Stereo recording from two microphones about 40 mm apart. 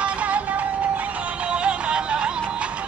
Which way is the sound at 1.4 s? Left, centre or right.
Right.